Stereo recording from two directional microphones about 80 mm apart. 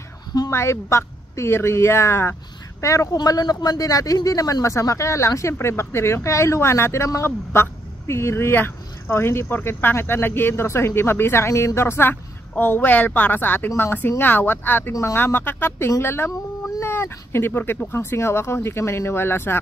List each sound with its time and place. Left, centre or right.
0.5 s a man's voice: left
3.2 s a man's voice: left